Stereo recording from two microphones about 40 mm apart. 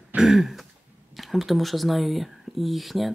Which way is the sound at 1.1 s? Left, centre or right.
Centre.